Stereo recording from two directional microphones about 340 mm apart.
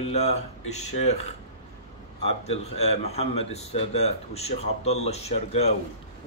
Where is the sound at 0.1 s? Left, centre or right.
Centre.